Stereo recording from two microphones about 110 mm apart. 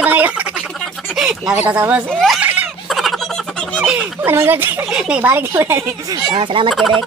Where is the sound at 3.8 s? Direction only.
10° right (ahead or behind).